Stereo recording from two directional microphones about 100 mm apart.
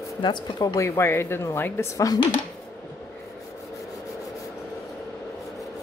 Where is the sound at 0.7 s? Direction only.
30° left (ahead or behind).